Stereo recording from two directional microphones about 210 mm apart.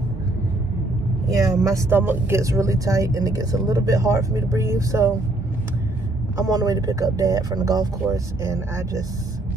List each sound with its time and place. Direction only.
1.2 s speech: 15° right (ahead or behind)
6.3 s speech: 15° right (ahead or behind)